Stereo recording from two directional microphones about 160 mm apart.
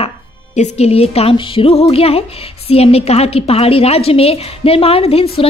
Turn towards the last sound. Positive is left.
turn(degrees=35)  # may be behind; listen again after turning